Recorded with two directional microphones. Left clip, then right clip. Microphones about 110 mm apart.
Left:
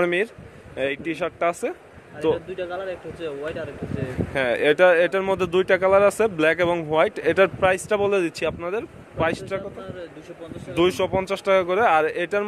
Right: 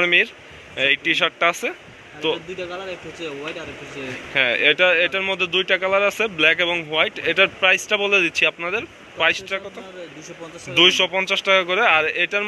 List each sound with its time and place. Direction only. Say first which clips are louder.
0.0 s speech: right 5 dB; 45° left (ahead or behind)
0.7 s speech: right 7 dB; 25° left (ahead or behind)
4.3 s speech: right 3 dB; 45° left (ahead or behind)
4.7 s speech: left 1 dB; 60° left (ahead or behind)
5.8 s speech: left 2 dB; 50° left (ahead or behind)
8.5 s a man's voice: right 3 dB; 25° left (ahead or behind)
10.7 s a man's voice: right 5 dB; 40° left (ahead or behind)